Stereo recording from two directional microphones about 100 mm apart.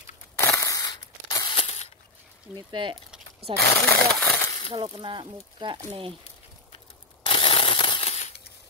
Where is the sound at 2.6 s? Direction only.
50° right (ahead or behind).